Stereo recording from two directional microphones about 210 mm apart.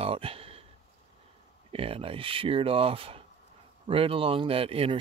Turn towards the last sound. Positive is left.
turn(degrees=-25)  # may be behind; listen again after turning